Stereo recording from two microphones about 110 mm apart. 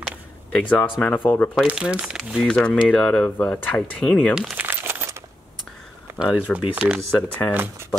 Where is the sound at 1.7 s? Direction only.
10° right (ahead or behind).